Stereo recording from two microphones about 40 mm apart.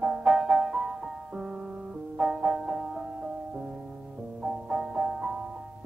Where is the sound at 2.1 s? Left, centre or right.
Centre.